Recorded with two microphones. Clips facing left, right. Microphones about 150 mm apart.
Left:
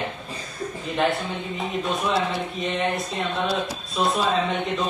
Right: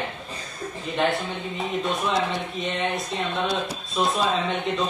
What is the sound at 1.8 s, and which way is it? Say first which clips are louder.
Speech: left 1 dB; centre (ahead or behind).